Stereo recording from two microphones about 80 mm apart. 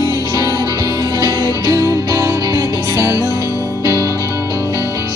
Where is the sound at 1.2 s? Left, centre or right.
Right.